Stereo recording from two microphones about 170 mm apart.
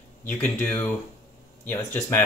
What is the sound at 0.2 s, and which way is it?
Speech, 10° left (ahead or behind).